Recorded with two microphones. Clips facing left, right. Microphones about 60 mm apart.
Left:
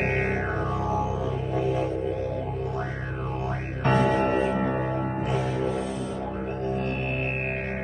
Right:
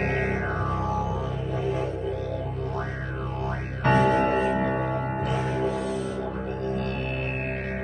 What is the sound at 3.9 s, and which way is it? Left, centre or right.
Music, right.